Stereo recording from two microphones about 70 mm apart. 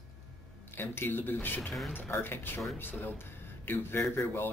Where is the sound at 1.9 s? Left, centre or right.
Left.